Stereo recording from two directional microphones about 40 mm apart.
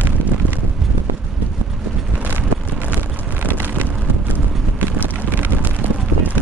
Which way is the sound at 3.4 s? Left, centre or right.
Right.